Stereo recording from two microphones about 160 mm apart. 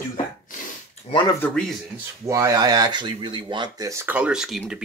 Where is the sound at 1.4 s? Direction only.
5° left (ahead or behind).